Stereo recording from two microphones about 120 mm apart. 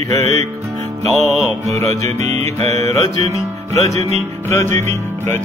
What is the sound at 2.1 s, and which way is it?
Music, 65° right (ahead or behind).